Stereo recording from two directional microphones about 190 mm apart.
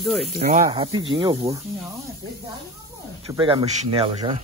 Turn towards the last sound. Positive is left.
turn(degrees=-30)  # may be behind; listen again after turning